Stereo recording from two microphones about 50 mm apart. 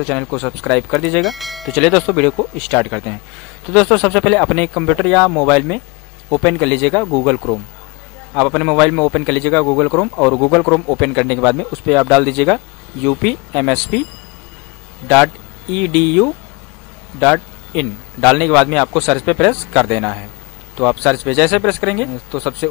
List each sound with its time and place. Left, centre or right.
0.0 s a man's voice: centre
1.2 s speech: centre
1.7 s a man's voice: centre
15.0 s a man's voice: centre